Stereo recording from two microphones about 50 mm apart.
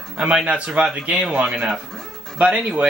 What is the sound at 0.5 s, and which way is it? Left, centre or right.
Speech, right.